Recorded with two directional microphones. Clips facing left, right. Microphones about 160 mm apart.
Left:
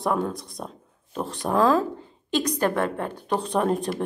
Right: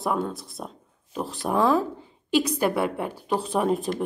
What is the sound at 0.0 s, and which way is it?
Speech, 5° right (ahead or behind).